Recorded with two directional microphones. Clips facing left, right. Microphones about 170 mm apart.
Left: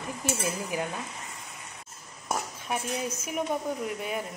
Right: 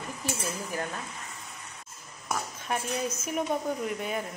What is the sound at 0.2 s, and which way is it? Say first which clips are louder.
Speech: left 3 dB; 15° left (ahead or behind).